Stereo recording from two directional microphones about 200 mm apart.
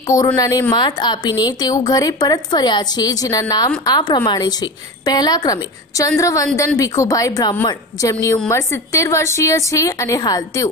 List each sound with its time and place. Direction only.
0.4 s a woman's voice: 20° left (ahead or behind)